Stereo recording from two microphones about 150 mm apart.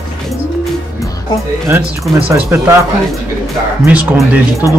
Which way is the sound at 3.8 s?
10° right (ahead or behind).